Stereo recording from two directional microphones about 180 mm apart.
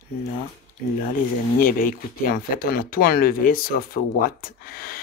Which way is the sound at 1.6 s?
50° left (ahead or behind).